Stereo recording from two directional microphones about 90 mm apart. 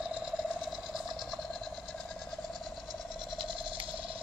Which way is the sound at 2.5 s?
50° right (ahead or behind).